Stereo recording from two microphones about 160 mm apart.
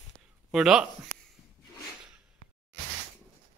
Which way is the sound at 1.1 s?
55° right (ahead or behind).